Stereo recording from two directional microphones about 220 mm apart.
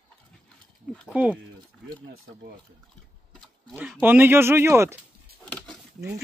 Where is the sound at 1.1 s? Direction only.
5° right (ahead or behind).